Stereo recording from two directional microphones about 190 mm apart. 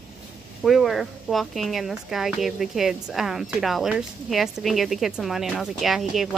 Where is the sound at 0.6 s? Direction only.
Centre (ahead or behind).